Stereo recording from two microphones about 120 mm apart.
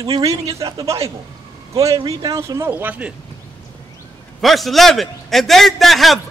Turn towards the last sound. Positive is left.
turn(degrees=0)  # may be behind; listen again after turning